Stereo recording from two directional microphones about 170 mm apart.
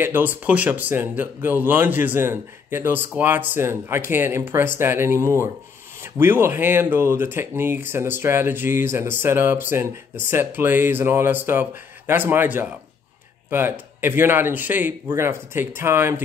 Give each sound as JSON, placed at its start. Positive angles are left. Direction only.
{"t": 0.0, "sound": "speech", "side_deg": -10}